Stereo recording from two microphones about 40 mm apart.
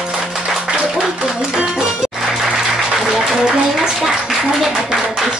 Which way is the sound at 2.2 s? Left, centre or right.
Centre.